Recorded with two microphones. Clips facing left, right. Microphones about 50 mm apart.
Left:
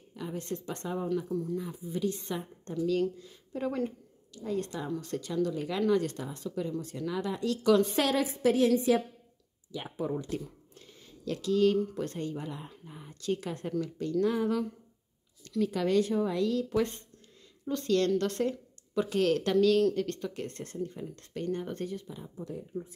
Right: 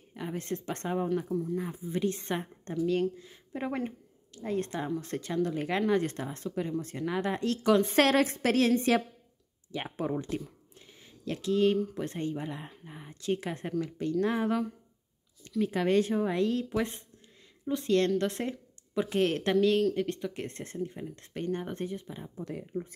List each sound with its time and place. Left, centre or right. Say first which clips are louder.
0.1 s speech: right 1 dB; right
7.9 s a woman's voice: right 4 dB; right
9.7 s speech: right 1 dB; right
10.3 s speech: right 1 dB; right
15.6 s speech: right 1 dB; right
16.6 s speech: left 2 dB; right
20.4 s speech: even; right
22.4 s a woman's voice: right 1 dB; right